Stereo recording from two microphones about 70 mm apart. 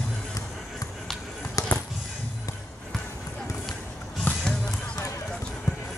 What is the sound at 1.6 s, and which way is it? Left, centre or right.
Music, left.